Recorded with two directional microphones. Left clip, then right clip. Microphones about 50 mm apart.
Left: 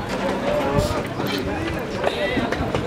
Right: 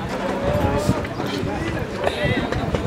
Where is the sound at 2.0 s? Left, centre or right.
Centre.